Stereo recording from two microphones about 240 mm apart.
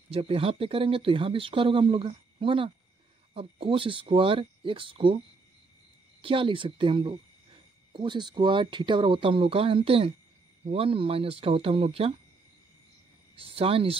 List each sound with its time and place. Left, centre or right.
0.1 s speech: right
6.2 s speech: right
13.4 s speech: right